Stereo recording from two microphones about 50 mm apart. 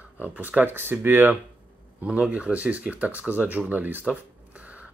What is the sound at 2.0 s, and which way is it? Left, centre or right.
Speech, right.